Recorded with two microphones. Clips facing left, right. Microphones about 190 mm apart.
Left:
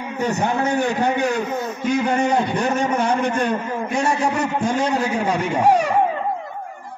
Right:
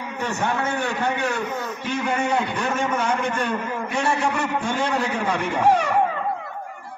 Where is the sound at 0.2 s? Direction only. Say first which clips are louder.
Left 4 dB; 40° left (ahead or behind).